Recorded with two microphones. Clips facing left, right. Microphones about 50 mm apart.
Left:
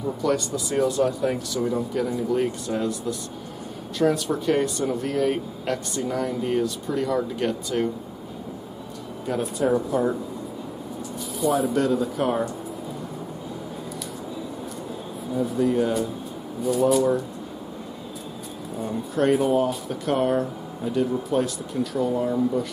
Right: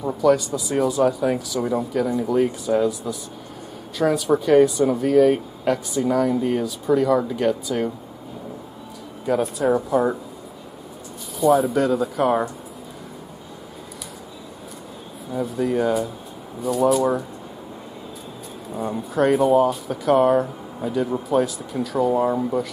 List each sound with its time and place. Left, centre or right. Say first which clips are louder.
0.2 s speech: right 8 dB; centre
9.2 s speech: right 4 dB; centre
11.3 s speech: right 5 dB; centre
15.4 s speech: right 1 dB; centre
18.8 s speech: right 3 dB; centre
22.2 s speech: right 2 dB; right